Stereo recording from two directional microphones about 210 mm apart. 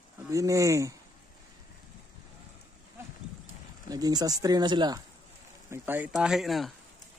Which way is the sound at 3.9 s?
20° right (ahead or behind).